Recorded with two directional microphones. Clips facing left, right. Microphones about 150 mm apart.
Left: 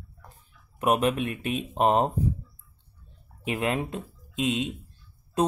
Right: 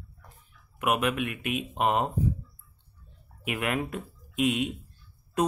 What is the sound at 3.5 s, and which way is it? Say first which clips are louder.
Speech: left 2 dB; 30° left (ahead or behind).